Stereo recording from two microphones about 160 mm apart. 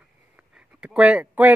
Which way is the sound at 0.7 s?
5° right (ahead or behind).